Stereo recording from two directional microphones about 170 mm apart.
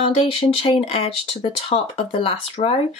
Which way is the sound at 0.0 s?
30° left (ahead or behind).